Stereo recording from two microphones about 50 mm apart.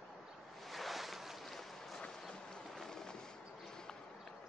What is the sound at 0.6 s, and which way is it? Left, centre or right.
Boat, centre.